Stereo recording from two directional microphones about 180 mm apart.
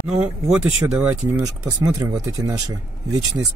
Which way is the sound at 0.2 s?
5° right (ahead or behind).